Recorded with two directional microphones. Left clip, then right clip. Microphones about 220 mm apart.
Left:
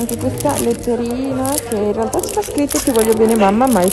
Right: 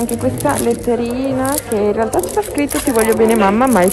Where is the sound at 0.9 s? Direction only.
15° left (ahead or behind).